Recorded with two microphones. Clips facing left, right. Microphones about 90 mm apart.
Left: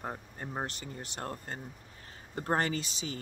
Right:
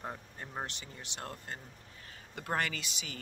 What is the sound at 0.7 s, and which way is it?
Speech, 40° left (ahead or behind).